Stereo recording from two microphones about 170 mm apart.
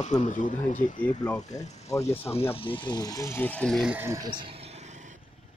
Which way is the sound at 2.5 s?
30° left (ahead or behind).